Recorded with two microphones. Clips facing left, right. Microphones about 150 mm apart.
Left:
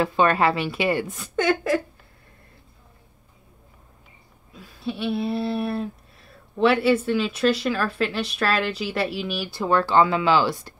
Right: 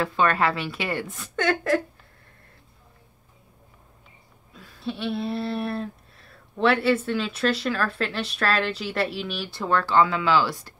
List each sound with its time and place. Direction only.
0.0 s a woman's voice: 20° left (ahead or behind)
4.6 s speech: 5° left (ahead or behind)